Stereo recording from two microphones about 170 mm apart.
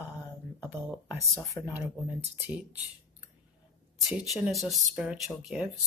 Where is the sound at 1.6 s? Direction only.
15° left (ahead or behind).